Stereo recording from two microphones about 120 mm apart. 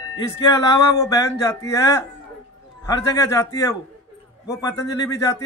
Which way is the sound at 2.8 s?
25° left (ahead or behind).